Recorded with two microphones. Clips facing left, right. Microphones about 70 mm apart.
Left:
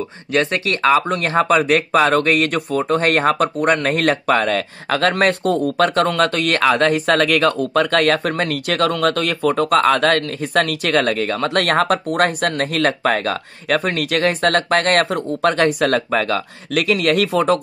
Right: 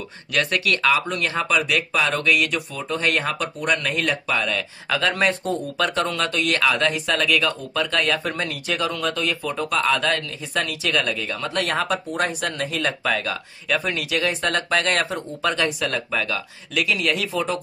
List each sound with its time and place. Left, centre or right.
0.3 s speech: left